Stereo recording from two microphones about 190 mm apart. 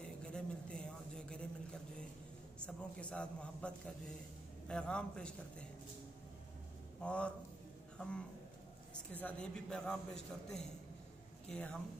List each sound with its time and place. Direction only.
0.0 s a sound: 5° left (ahead or behind)
2.6 s a man's voice: 5° left (ahead or behind)
7.0 s a man's voice: 5° left (ahead or behind)
9.1 s a man's voice: 5° left (ahead or behind)